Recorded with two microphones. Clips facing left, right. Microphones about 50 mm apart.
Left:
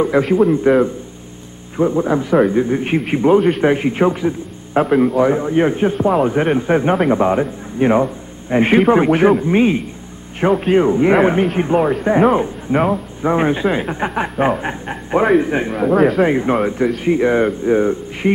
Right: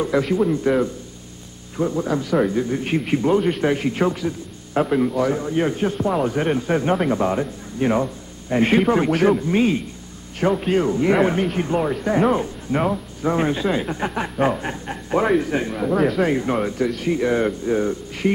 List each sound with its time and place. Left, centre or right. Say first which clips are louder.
0.0 s speech: left 6 dB; left
16.3 s speech: left 5 dB; left